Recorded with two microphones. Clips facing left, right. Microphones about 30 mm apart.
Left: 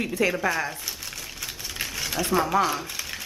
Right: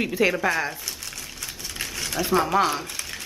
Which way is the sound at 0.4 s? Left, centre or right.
Centre.